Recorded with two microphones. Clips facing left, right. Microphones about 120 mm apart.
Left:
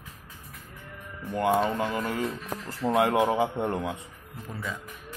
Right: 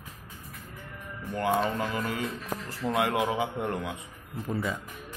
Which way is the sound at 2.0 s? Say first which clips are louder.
Left 2 dB; 35° left (ahead or behind).